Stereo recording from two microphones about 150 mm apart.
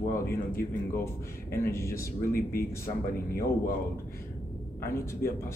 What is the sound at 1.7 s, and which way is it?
Speech, 20° left (ahead or behind).